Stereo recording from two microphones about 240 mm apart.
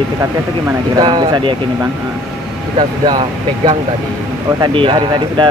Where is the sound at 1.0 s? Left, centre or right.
Centre.